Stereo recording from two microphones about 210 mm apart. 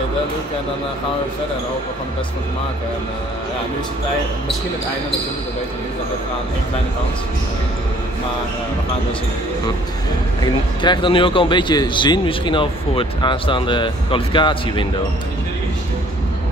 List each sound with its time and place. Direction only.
10.4 s speech: 20° left (ahead or behind)